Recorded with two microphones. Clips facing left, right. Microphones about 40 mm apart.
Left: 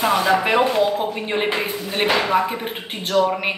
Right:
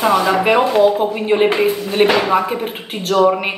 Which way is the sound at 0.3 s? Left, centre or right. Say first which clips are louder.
Right 3 dB; centre.